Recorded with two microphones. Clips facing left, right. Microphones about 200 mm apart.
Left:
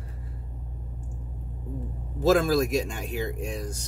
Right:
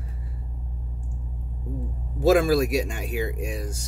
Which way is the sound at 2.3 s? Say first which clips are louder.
Right 2 dB; 10° right (ahead or behind).